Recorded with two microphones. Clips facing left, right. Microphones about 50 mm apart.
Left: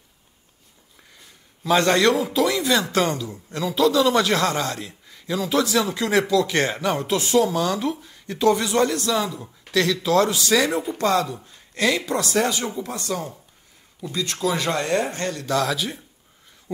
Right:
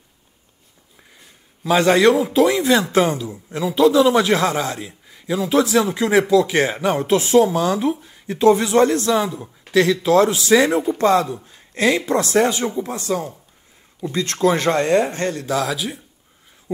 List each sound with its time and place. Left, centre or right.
1.1 s a sound: centre
2.3 s a man's voice: right
6.9 s speech: right
14.2 s speech: right
15.4 s a man's voice: centre